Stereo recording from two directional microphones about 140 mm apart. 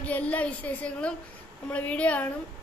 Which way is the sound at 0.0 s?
10° left (ahead or behind).